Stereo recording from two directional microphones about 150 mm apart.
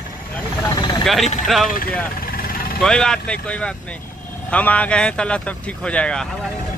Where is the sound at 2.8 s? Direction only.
5° left (ahead or behind).